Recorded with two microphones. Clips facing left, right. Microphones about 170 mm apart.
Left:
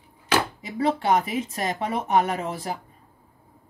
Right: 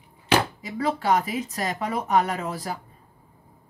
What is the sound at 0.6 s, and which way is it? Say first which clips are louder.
Speech: left 2 dB; 25° left (ahead or behind).